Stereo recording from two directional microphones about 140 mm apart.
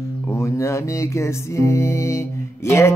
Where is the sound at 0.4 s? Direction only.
20° left (ahead or behind).